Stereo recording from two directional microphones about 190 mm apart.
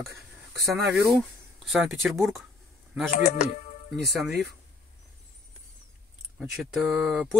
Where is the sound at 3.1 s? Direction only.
35° left (ahead or behind).